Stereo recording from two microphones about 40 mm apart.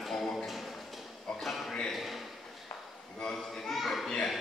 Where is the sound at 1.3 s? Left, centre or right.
Centre.